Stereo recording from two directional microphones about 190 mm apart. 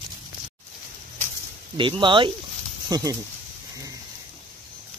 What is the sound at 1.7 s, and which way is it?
Speech, 25° right (ahead or behind).